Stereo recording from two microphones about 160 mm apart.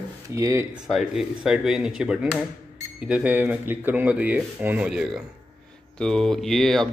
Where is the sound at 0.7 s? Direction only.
5° right (ahead or behind).